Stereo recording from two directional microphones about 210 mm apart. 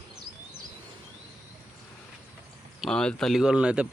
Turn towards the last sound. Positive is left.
turn(degrees=-5)  # may be behind; listen again after turning